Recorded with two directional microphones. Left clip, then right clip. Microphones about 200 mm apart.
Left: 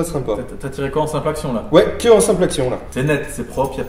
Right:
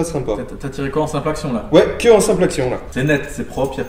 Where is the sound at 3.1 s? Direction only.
5° right (ahead or behind).